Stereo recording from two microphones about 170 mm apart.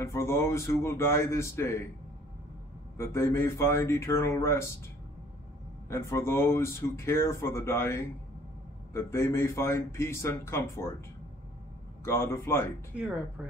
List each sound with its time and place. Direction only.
0.0 s speech: 15° left (ahead or behind)
3.0 s speech: 15° left (ahead or behind)
5.9 s speech: 15° left (ahead or behind)
12.0 s speech: 15° left (ahead or behind)
12.9 s speech: 5° right (ahead or behind)